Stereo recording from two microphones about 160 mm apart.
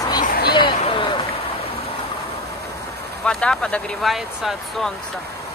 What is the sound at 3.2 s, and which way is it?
Speech, 5° left (ahead or behind).